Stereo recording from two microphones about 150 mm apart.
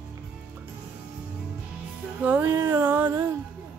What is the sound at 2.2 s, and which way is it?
Music, 10° right (ahead or behind).